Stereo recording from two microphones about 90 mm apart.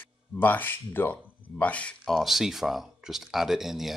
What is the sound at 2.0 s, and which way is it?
Speech, centre (ahead or behind).